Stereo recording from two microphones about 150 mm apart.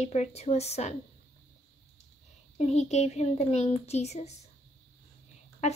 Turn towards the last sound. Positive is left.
turn(degrees=50)  # may be behind; listen again after turning